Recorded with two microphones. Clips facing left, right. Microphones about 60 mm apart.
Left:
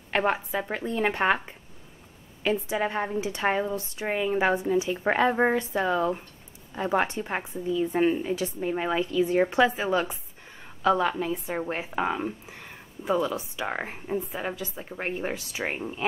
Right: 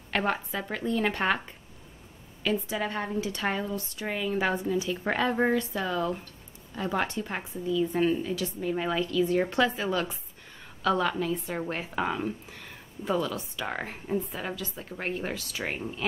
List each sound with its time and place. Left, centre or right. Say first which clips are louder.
0.1 s a woman's voice: left 3 dB; centre